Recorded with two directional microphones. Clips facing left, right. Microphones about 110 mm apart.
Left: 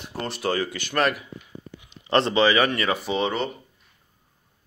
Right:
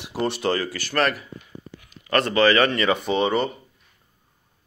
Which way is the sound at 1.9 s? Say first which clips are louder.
Left 1 dB; 25° left (ahead or behind).